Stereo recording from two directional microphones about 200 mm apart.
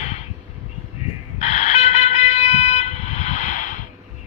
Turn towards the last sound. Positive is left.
turn(degrees=40)  # may be behind; listen again after turning